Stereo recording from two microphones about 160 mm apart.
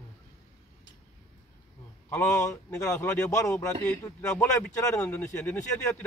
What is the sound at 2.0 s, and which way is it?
Speech, 15° left (ahead or behind).